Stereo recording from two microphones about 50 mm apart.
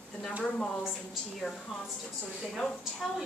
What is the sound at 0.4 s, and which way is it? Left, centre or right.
Speech, centre.